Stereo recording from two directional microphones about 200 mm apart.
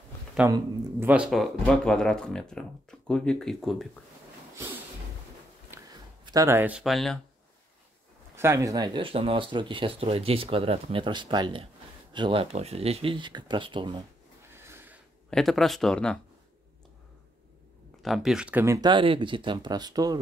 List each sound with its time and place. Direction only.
0.5 s speech: 10° right (ahead or behind)
5.7 s a sound: 10° right (ahead or behind)
6.2 s speech: 15° right (ahead or behind); by 7.2 s centre (ahead or behind)
8.4 s speech: 15° right (ahead or behind)
14.5 s a sound: 10° right (ahead or behind)
15.2 s speech: centre (ahead or behind)
18.0 s speech: centre (ahead or behind); by 20.2 s 20° right (ahead or behind)